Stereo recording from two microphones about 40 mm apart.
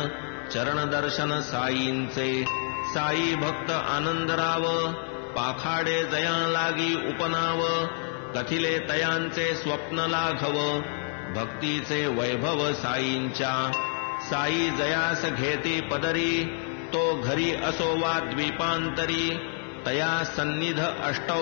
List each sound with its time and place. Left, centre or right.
0.6 s mantra: centre
14.8 s mantra: centre
16.9 s music: centre
17.3 s mantra: centre